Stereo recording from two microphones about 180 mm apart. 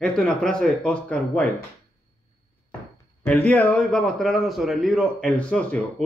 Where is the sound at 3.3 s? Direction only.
10° left (ahead or behind).